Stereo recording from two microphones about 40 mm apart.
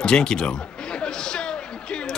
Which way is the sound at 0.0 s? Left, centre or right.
Centre.